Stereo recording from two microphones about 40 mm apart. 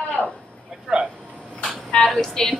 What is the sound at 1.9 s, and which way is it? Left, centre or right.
Speech, centre.